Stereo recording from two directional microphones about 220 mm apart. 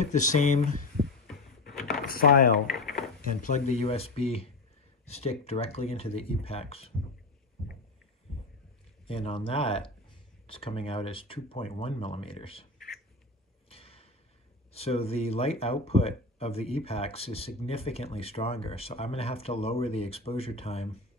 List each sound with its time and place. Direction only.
0.0 s speech: 35° left (ahead or behind)
1.7 s a sound: centre (ahead or behind)
2.0 s speech: 40° left (ahead or behind)
2.7 s drawer open or close: centre (ahead or behind)
3.2 s speech: 35° left (ahead or behind)
9.0 s speech: 25° left (ahead or behind)
13.7 s a sound: 25° left (ahead or behind)
14.7 s speech: 25° left (ahead or behind)